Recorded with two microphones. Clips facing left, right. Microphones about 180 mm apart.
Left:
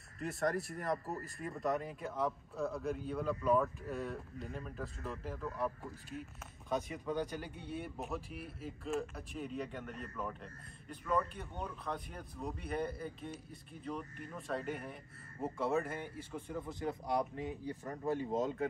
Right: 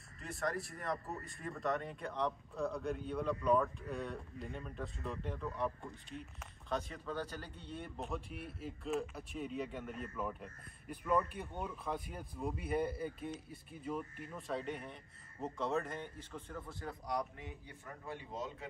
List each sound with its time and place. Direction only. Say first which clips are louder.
0.2 s speech: left 4 dB; centre (ahead or behind)
6.7 s speech: left 3 dB; 15° left (ahead or behind); by 18.7 s 50° left (ahead or behind)